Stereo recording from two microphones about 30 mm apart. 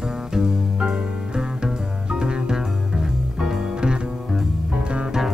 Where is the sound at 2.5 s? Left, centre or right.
Centre.